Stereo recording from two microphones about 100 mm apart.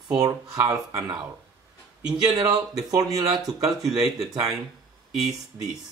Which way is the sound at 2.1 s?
40° right (ahead or behind).